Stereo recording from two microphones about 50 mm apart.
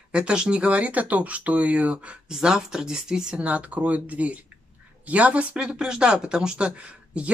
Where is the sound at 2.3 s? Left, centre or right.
Centre.